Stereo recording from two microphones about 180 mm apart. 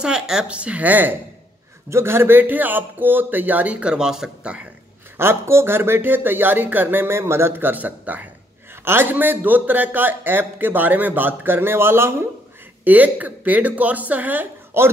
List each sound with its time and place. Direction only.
0.0 s a man's voice: 5° right (ahead or behind)